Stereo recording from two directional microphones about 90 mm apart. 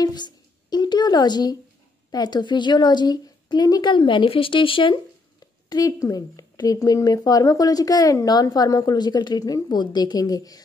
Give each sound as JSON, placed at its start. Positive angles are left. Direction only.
{"t": 0.0, "sound": "a sound", "side_deg": 50}
{"t": 2.0, "sound": "a woman's voice", "side_deg": 50}
{"t": 3.9, "sound": "speech", "side_deg": 65}
{"t": 5.7, "sound": "a woman's voice", "side_deg": 50}
{"t": 5.9, "sound": "speech", "side_deg": 40}